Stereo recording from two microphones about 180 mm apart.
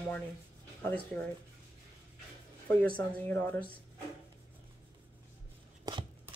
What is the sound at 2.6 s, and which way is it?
Speech, 10° left (ahead or behind).